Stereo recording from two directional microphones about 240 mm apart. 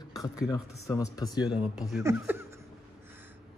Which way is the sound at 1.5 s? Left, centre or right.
Centre.